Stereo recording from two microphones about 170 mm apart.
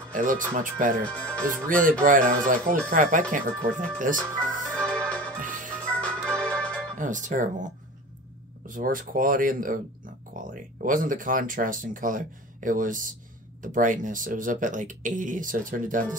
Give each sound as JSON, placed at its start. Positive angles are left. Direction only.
{"t": 0.1, "sound": "speech", "side_deg": -50}
{"t": 4.7, "sound": "organ", "side_deg": 5}
{"t": 5.4, "sound": "music", "side_deg": -50}
{"t": 5.8, "sound": "music", "side_deg": 5}
{"t": 7.0, "sound": "speech", "side_deg": -50}
{"t": 8.6, "sound": "speech", "side_deg": -55}